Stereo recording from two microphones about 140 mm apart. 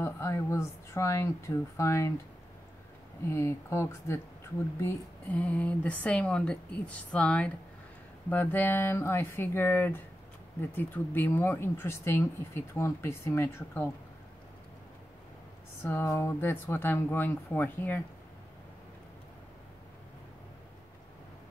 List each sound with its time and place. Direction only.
0.0 s speech: 20° left (ahead or behind)
3.3 s a woman's voice: 20° left (ahead or behind)
15.8 s a woman's voice: 15° left (ahead or behind)